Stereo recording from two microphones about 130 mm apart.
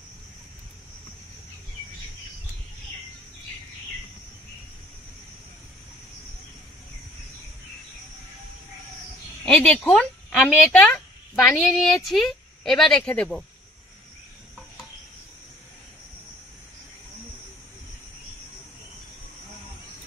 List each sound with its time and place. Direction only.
9.4 s a woman's voice: 5° left (ahead or behind)
10.7 s speech: 5° left (ahead or behind)